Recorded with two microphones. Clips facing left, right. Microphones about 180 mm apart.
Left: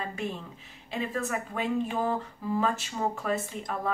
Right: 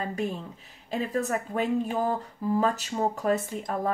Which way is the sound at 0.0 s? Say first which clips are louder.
Right 4 dB; 40° right (ahead or behind).